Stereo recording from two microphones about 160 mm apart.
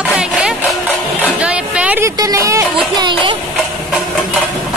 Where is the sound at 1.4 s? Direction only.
5° right (ahead or behind).